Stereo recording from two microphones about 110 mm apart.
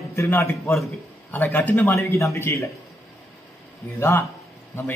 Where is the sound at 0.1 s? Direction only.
20° left (ahead or behind).